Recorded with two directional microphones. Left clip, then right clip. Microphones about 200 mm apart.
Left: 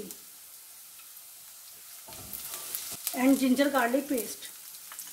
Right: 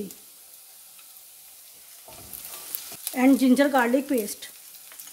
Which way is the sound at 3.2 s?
50° right (ahead or behind).